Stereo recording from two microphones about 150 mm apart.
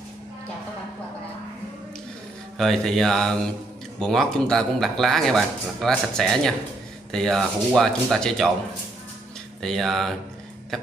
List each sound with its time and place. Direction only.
2.5 s speech: centre (ahead or behind)
9.6 s speech: centre (ahead or behind)